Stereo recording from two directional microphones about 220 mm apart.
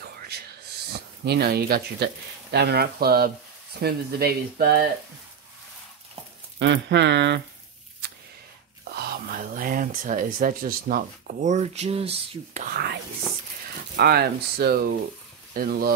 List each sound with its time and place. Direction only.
0.9 s speech: 50° right (ahead or behind)
6.6 s speech: 55° right (ahead or behind)
8.9 s speech: 40° right (ahead or behind); by 12.6 s 25° right (ahead or behind)
12.6 s speech: 45° right (ahead or behind)
13.9 s speech: 45° right (ahead or behind)